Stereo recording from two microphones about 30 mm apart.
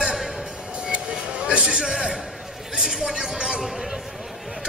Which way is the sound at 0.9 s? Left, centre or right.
Right.